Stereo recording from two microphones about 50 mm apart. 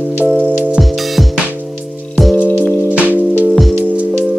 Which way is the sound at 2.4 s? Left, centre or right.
Right.